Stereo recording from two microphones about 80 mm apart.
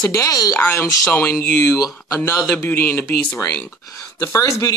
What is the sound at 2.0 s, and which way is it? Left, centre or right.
Speech, left.